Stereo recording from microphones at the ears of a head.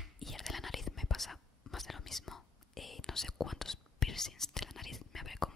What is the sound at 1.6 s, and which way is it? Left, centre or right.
Whispering, left.